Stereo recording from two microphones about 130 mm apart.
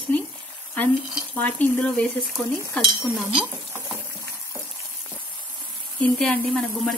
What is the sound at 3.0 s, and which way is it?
Speech, centre (ahead or behind).